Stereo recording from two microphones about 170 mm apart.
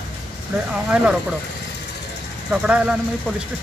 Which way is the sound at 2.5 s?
5° right (ahead or behind).